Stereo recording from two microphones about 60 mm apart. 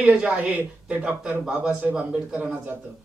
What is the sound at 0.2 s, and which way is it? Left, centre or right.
Speech, right.